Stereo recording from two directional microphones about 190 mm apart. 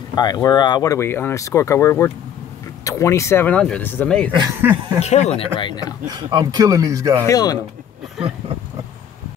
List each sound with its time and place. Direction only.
0.1 s speech: 20° left (ahead or behind); by 4.3 s 5° left (ahead or behind)
4.4 s speech: 15° right (ahead or behind)
5.0 s speech: 35° left (ahead or behind)
6.0 s speech: 20° right (ahead or behind)
7.2 s speech: 20° left (ahead or behind)